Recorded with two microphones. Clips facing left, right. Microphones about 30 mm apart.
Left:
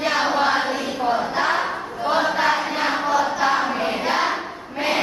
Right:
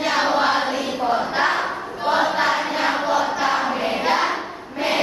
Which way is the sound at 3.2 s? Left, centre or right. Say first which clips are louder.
Even; centre.